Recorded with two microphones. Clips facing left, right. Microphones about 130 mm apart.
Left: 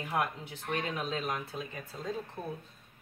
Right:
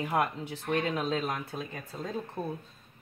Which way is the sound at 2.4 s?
25° right (ahead or behind).